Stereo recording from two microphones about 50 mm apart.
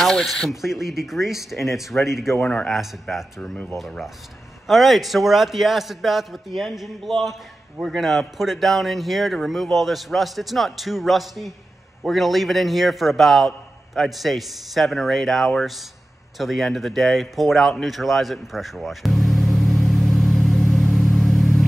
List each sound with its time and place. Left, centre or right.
0.0 s speech: centre
2.4 s a man's voice: centre
2.7 s speech: centre
4.6 s speech: centre
16.3 s a sound: centre